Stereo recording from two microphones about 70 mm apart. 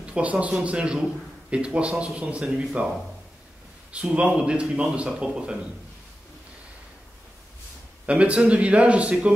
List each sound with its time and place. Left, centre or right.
0.0 s speech: centre
3.9 s speech: centre
8.1 s speech: centre